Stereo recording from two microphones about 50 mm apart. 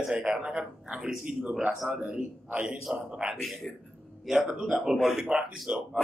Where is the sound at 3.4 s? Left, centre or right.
Centre; by 5.8 s right.